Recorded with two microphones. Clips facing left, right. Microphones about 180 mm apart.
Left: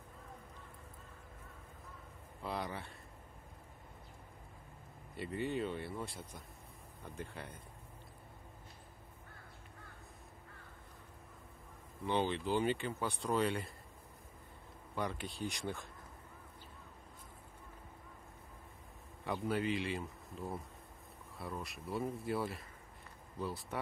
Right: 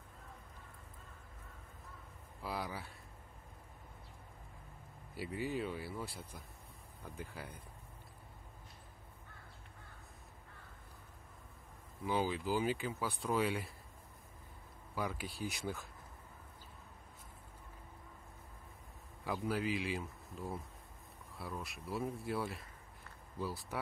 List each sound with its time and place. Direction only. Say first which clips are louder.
2.4 s speech: left 1 dB; 5° right (ahead or behind)
5.1 s speech: left 1 dB; 5° right (ahead or behind)
12.0 s speech: left 1 dB; 5° right (ahead or behind)
15.0 s speech: left 1 dB; 5° right (ahead or behind)
19.2 s speech: left 1 dB; centre (ahead or behind)